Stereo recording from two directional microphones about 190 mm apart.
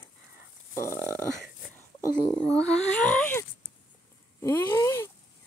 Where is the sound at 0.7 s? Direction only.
15° left (ahead or behind).